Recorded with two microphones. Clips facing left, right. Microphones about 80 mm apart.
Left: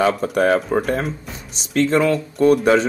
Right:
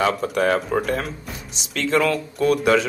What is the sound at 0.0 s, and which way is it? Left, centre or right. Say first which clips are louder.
A man's voice: left 3 dB; left.